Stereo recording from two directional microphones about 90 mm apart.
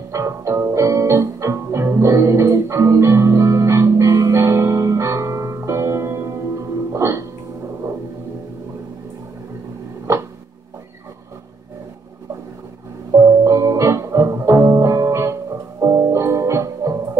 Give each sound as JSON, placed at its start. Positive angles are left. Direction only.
{"t": 0.1, "sound": "music", "side_deg": -35}
{"t": 13.4, "sound": "music", "side_deg": -35}